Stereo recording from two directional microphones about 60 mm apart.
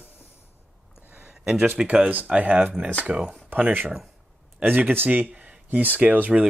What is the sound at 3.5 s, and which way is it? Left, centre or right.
Speech, right.